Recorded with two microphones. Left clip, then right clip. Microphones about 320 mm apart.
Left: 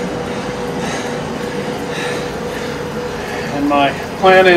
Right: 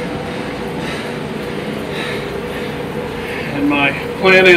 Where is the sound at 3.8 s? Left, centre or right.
Centre.